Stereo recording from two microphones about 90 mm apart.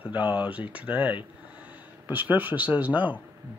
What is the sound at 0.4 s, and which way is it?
Speech, 15° right (ahead or behind).